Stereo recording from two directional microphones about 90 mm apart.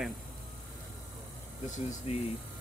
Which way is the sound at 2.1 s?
90° left.